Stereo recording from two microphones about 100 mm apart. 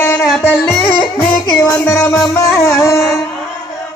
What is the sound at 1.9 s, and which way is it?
Music, 30° left (ahead or behind).